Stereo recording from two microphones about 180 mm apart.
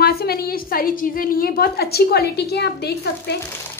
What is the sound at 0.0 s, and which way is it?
A woman's voice, 60° left (ahead or behind).